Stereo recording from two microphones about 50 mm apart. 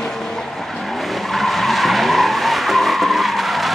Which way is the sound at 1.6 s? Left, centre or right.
Centre.